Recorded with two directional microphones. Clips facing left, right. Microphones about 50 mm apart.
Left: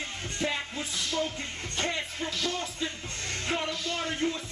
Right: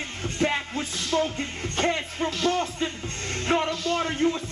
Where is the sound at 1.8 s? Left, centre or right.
Right.